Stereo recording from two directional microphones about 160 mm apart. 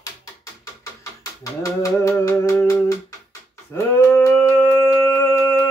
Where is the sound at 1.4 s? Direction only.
20° left (ahead or behind).